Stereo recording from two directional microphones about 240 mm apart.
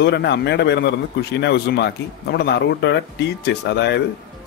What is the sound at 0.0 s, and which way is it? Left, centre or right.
Speech, left.